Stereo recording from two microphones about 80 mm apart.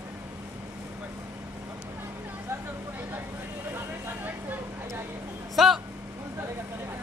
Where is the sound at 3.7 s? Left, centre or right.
Right.